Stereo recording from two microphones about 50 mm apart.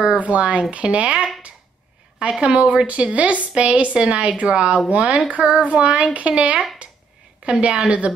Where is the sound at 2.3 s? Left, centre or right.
Centre.